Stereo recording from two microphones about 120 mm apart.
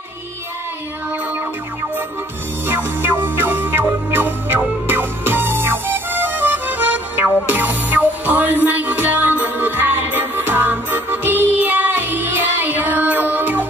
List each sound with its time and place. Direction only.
2.6 s music: 20° right (ahead or behind)